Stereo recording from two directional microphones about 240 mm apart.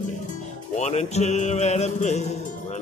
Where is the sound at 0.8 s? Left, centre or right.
Left.